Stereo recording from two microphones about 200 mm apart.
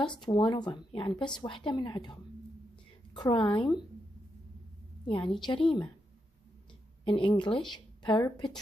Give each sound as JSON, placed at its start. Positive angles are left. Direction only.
{"t": 0.0, "sound": "speech", "side_deg": 20}
{"t": 3.2, "sound": "speech", "side_deg": 20}
{"t": 5.0, "sound": "a woman's voice", "side_deg": 25}
{"t": 7.1, "sound": "speech", "side_deg": 25}